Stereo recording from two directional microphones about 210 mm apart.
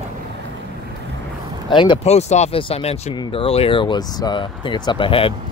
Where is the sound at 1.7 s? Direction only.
20° left (ahead or behind).